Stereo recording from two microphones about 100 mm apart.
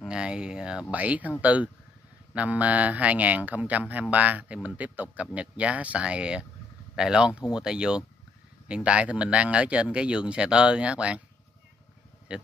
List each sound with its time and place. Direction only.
0.0 s speech: 10° right (ahead or behind)
12.3 s speech: 10° right (ahead or behind)